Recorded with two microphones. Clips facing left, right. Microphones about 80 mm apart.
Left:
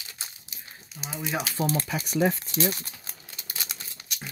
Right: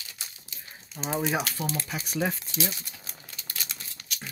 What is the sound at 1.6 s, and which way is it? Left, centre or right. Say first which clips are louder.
Speech: left 5 dB; left.